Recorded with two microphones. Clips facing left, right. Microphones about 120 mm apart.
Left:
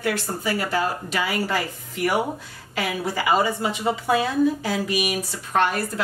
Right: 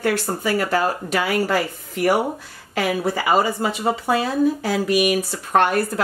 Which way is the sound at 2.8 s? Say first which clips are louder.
Right 4 dB; 45° right (ahead or behind).